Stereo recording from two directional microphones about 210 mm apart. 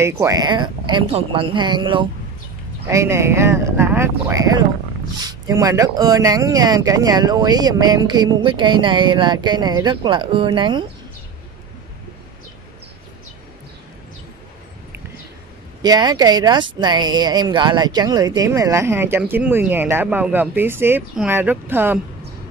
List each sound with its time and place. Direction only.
0.0 s speech: 15° right (ahead or behind)
15.8 s speech: 20° right (ahead or behind)